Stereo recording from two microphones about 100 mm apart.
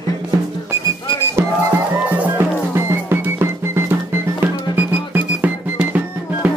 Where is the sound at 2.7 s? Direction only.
25° right (ahead or behind).